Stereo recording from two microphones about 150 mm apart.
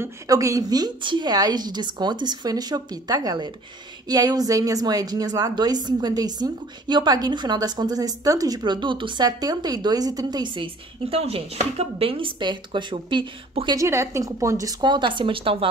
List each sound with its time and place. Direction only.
0.0 s a woman's voice: 20° right (ahead or behind)
13.7 s a woman's voice: 20° right (ahead or behind); by 15.7 s 35° right (ahead or behind)